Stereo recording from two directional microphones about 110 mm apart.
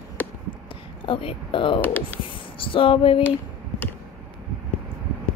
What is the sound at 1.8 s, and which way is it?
Speech, 15° left (ahead or behind).